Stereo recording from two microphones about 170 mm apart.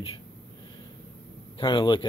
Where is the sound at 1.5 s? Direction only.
30° left (ahead or behind).